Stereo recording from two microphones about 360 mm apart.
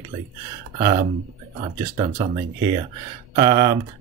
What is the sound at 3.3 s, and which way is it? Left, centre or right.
Speech, centre.